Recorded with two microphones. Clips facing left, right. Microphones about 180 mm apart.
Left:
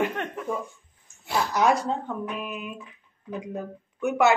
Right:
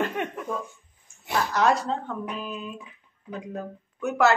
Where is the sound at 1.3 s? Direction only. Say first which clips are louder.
Even; 5° left (ahead or behind).